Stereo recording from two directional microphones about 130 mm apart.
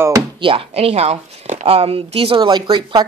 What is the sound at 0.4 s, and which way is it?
Speech, 45° right (ahead or behind).